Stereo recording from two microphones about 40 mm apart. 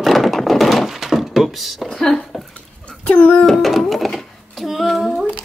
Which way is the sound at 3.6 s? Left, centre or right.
Centre.